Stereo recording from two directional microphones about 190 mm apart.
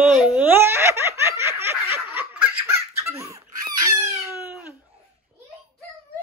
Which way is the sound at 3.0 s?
15° right (ahead or behind).